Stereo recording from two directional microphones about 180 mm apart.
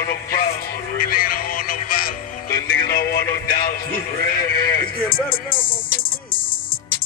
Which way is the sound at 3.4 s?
55° left (ahead or behind).